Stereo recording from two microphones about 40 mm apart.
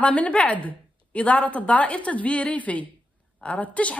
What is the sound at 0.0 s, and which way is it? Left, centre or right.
A woman's voice, left.